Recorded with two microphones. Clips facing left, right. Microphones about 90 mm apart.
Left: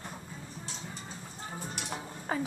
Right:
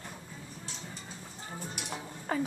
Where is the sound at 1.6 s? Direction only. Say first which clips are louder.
Even; 15° left (ahead or behind).